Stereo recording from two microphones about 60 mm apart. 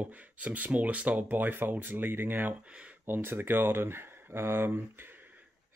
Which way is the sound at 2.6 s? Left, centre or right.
Right.